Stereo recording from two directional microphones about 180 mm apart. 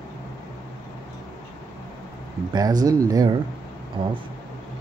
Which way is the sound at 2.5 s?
20° right (ahead or behind).